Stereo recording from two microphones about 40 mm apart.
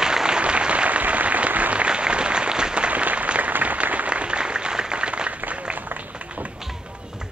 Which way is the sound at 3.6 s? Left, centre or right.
Right.